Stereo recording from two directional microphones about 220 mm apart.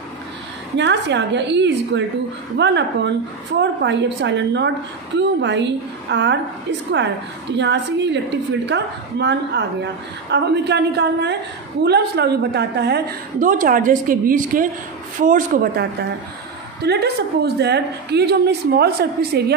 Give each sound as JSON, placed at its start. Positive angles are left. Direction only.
{"t": 0.7, "sound": "a woman's voice", "side_deg": -55}
{"t": 3.8, "sound": "a woman's voice", "side_deg": -55}
{"t": 7.5, "sound": "a woman's voice", "side_deg": -55}